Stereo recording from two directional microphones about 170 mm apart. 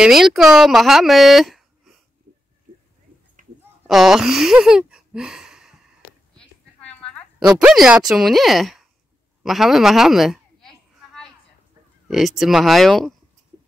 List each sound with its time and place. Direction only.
0.0 s speech: centre (ahead or behind)
3.4 s a sound: 50° right (ahead or behind)
3.8 s speech: centre (ahead or behind)
6.9 s a sound: 5° left (ahead or behind)
7.3 s a woman's voice: 5° right (ahead or behind)
12.1 s speech: centre (ahead or behind)